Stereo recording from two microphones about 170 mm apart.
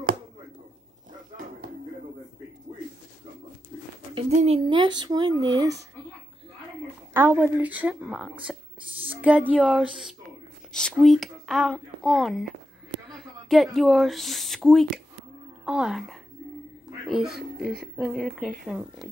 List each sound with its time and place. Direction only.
4.3 s speech: 45° right (ahead or behind)
4.6 s speech: 25° right (ahead or behind)
7.2 s a woman's voice: 15° right (ahead or behind)